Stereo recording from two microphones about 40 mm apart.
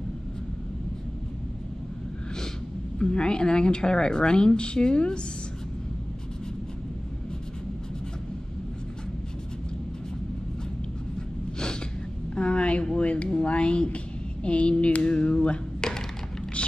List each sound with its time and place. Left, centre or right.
3.0 s a woman's voice: left
12.4 s a sound: left
12.9 s a woman's voice: left
16.6 s vehicle: left